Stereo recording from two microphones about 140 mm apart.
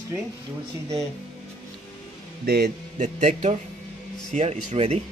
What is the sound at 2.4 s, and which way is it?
A man's voice, 90° right.